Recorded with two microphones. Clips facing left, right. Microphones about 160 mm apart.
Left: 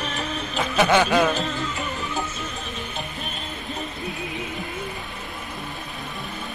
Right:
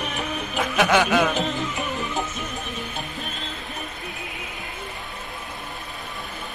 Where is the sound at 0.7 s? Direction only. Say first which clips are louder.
Left 1 dB; centre (ahead or behind).